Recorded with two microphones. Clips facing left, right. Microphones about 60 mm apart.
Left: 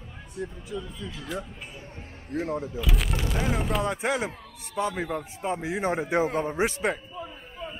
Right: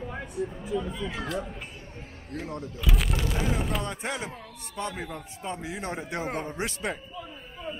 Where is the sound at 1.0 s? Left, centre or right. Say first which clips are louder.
Right 5 dB; right.